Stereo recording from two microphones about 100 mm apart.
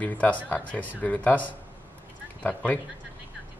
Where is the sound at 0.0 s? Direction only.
20° left (ahead or behind).